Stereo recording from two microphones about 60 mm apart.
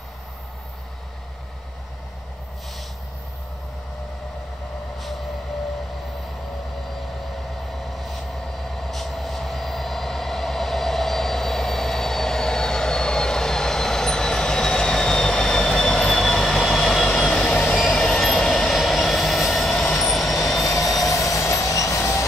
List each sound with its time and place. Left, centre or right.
7.7 s train: centre
8.6 s vehicle: centre
17.5 s train: centre
20.8 s vehicle: centre
21.3 s music: left